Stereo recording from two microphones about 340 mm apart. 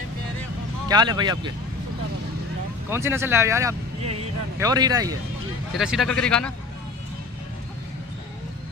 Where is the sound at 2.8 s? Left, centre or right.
Centre.